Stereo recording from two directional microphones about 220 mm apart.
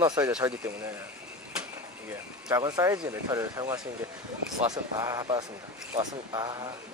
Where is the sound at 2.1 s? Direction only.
15° right (ahead or behind).